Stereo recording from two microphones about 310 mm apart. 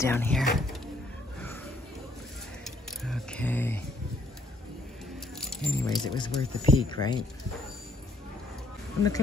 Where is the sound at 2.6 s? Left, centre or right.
Centre.